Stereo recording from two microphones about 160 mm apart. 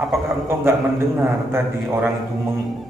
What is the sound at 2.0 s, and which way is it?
Speech, centre (ahead or behind).